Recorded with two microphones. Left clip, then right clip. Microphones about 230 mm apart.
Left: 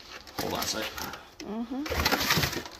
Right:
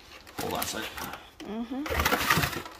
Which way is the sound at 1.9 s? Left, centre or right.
Centre.